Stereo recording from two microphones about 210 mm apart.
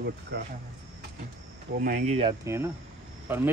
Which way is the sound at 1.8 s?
40° right (ahead or behind).